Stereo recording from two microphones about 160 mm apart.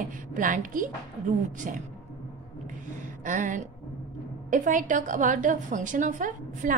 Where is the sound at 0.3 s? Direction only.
55° right (ahead or behind).